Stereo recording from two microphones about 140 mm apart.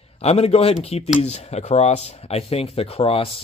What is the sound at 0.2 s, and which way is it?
Speech, 50° left (ahead or behind).